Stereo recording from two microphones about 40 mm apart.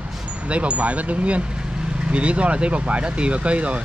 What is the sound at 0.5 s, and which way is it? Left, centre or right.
Speech, right.